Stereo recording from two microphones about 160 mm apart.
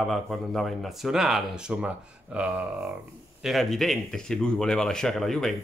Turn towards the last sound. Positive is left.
turn(degrees=5)  # may be behind; listen again after turning